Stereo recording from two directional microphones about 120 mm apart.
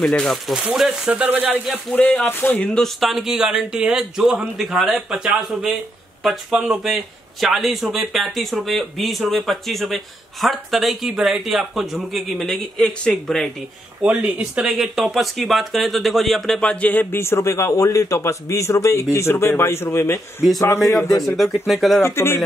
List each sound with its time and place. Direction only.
0.0 s a man's voice: 5° left (ahead or behind); by 1.6 s 10° right (ahead or behind)
2.0 s a man's voice: 15° left (ahead or behind)
14.0 s speech: 10° right (ahead or behind); by 20.4 s 20° left (ahead or behind)
21.6 s a man's voice: centre (ahead or behind)
22.0 s speech: 20° left (ahead or behind)